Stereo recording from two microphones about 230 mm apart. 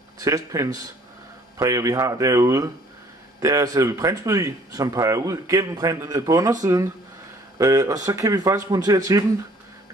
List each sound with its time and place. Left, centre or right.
0.2 s speech: centre